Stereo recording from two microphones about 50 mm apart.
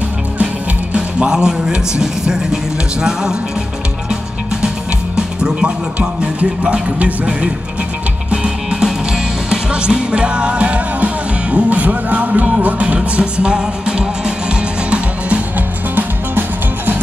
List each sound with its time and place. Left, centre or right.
0.9 s speech: centre
5.1 s music: centre
16.0 s music: right